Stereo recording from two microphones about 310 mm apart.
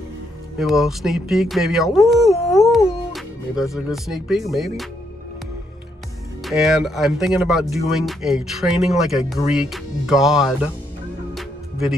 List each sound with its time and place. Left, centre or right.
0.6 s speech: centre
6.4 s speech: centre